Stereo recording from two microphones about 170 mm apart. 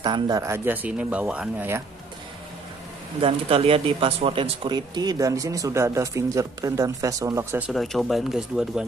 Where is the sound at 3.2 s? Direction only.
30° right (ahead or behind); by 7.6 s 15° right (ahead or behind).